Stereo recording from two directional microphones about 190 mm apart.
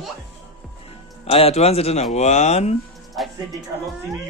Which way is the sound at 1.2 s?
30° left (ahead or behind).